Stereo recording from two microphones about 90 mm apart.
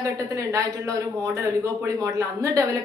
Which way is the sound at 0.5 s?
40° right (ahead or behind).